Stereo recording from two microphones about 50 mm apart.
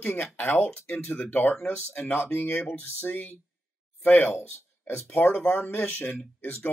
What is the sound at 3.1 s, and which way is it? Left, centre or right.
Speech, left.